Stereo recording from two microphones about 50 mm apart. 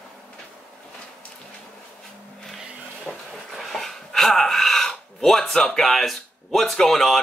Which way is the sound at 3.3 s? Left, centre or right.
Centre.